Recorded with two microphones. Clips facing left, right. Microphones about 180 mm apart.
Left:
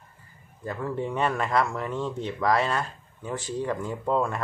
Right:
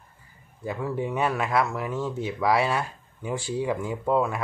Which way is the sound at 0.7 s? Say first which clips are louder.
Right 1 dB; 10° right (ahead or behind).